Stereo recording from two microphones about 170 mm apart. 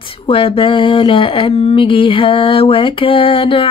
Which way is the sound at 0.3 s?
30° left (ahead or behind).